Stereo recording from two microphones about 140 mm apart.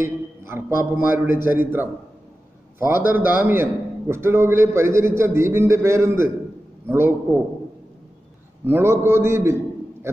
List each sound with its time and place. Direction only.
0.5 s a man's voice: 15° right (ahead or behind)
8.6 s a man's voice: 15° right (ahead or behind)